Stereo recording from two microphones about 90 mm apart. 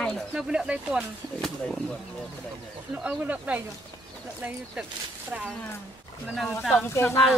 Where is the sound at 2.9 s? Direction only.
15° right (ahead or behind).